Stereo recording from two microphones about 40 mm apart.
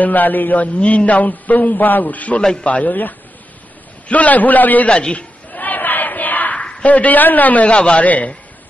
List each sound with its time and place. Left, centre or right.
0.0 s a man's voice: left
4.8 s a man's voice: left
5.5 s a sound: left
6.6 s a sound: left
6.9 s a man's voice: left
7.7 s a man's voice: left
8.0 s a man's voice: left